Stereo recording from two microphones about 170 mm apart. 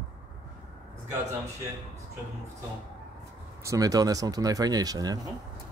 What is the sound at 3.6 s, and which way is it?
Speech, 20° right (ahead or behind).